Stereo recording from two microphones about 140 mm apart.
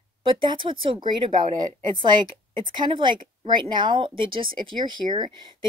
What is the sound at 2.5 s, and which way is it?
Speech, 35° right (ahead or behind).